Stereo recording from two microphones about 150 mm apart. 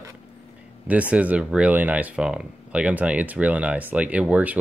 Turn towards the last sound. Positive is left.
turn(degrees=-10)  # may be behind; listen again after turning